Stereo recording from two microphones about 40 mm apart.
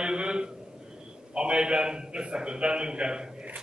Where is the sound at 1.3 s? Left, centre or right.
Right.